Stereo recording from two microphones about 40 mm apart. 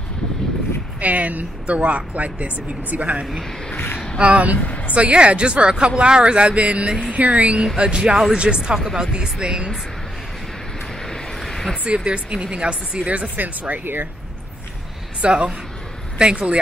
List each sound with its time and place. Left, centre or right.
1.0 s speech: right
4.6 s a woman's voice: left
4.9 s speech: right
7.7 s speech: right
8.7 s speech: centre
9.1 s speech: right
11.3 s a sound: centre
11.8 s speech: right
13.4 s speech: right
15.2 s speech: right